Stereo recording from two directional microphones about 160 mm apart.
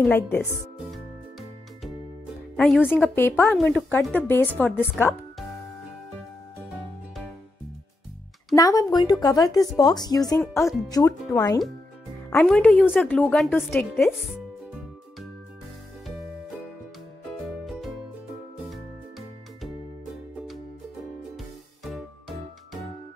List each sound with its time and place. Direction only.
0.0 s a woman's voice: 15° left (ahead or behind)
2.5 s a woman's voice: 5° left (ahead or behind)
8.5 s a woman's voice: 20° left (ahead or behind)
12.3 s a woman's voice: 5° left (ahead or behind)
17.6 s music: centre (ahead or behind)
21.4 s music: centre (ahead or behind)